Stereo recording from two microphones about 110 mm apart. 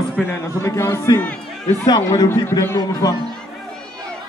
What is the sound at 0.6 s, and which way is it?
Speech, 25° left (ahead or behind).